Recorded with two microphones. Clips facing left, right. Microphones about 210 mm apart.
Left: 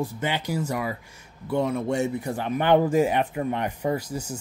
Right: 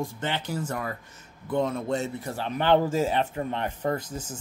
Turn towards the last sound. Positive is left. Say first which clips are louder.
# left 2 dB
turn(degrees=10)  # may be behind; listen again after turning